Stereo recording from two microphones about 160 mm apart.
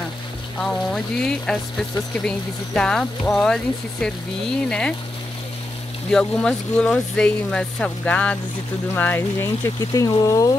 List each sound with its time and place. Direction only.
0.6 s speech: 5° left (ahead or behind)
6.1 s speech: 5° left (ahead or behind); by 10.5 s 20° left (ahead or behind)